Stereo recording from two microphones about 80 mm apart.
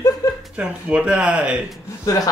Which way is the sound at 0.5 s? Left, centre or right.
Centre.